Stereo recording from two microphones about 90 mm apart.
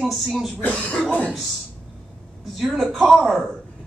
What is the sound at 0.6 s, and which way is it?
Speech, 15° left (ahead or behind).